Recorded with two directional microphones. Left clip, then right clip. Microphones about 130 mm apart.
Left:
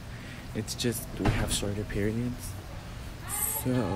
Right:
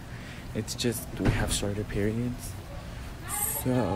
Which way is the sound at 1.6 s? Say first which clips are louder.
Right 1 dB; 10° right (ahead or behind).